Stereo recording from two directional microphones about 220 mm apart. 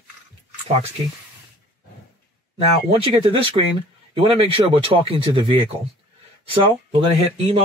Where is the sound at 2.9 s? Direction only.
25° right (ahead or behind).